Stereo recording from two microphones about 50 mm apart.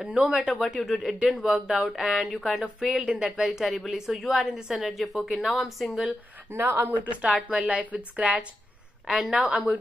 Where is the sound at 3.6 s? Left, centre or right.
Centre.